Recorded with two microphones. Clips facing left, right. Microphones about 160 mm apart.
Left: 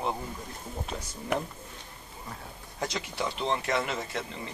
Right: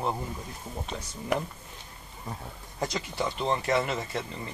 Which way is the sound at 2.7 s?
Centre (ahead or behind).